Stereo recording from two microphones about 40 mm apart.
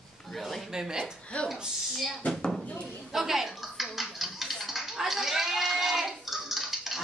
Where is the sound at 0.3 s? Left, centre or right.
Centre.